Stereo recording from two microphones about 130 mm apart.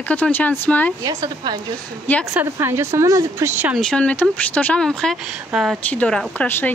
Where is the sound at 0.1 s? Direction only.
15° left (ahead or behind).